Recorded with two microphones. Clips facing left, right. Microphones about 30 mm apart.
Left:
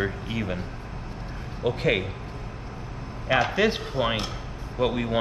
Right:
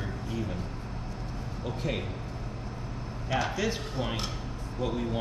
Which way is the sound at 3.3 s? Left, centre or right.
Left.